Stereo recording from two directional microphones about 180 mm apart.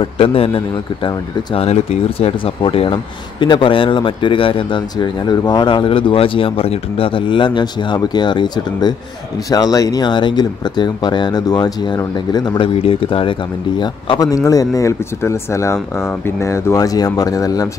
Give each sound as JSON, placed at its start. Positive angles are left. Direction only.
{"t": 0.0, "sound": "speech", "side_deg": 30}